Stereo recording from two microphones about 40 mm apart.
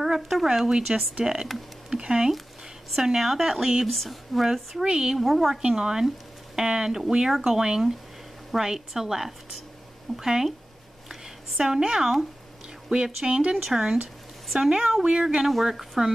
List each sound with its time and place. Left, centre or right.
0.0 s speech: centre
0.9 s speech: right
3.0 s speech: centre
4.8 s speech: centre
5.1 s speech: centre
5.6 s speech: centre
11.1 s a sound: centre
11.8 s speech: centre
12.9 s speech: right
13.7 s speech: centre